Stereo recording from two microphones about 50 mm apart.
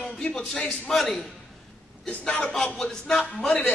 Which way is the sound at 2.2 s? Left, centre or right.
Left.